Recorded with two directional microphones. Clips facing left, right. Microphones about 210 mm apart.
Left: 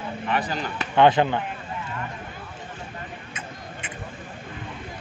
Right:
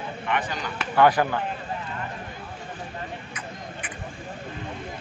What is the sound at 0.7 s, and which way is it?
Speech, 25° left (ahead or behind).